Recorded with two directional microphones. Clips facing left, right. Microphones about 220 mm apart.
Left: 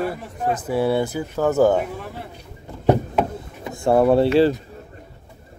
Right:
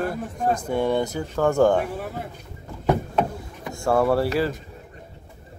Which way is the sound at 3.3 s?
20° left (ahead or behind).